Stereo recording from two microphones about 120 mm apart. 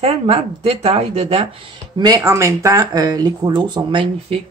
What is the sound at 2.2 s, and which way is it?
Speech, 25° right (ahead or behind).